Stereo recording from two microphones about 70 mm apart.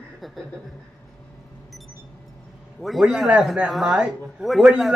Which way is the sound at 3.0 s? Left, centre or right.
Centre.